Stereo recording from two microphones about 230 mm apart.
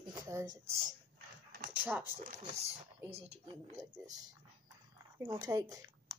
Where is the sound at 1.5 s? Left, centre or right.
Right.